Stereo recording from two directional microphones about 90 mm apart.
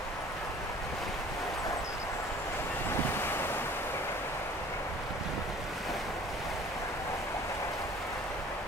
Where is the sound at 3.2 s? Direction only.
25° left (ahead or behind).